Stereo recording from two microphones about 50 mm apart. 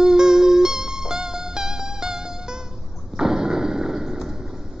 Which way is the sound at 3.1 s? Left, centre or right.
Centre.